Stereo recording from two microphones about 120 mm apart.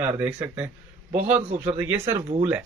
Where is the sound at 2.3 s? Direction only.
90° right.